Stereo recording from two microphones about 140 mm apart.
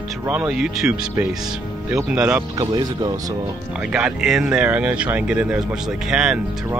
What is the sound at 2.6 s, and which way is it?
Speech, 30° right (ahead or behind).